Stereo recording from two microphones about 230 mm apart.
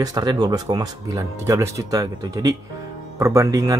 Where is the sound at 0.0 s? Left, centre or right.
Centre.